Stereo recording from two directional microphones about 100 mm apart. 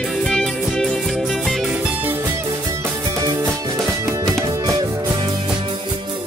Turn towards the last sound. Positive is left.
turn(degrees=-40)  # may be behind; listen again after turning